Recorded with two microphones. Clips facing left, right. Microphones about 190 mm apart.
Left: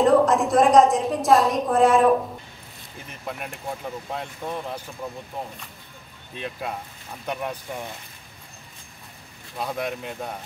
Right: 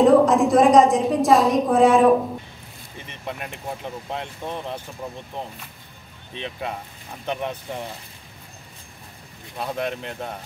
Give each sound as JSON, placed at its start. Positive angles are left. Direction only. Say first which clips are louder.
{"t": 0.0, "sound": "a woman's voice", "louder": "right 3 dB", "side_deg": 0}
{"t": 4.4, "sound": "speech", "louder": "left 1 dB", "side_deg": -20}
{"t": 6.3, "sound": "a woman's voice", "louder": "right 1 dB", "side_deg": 5}
{"t": 9.6, "sound": "speech", "louder": "right 1 dB", "side_deg": 10}